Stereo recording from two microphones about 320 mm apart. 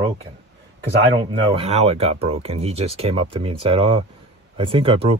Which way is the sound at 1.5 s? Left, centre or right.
Centre.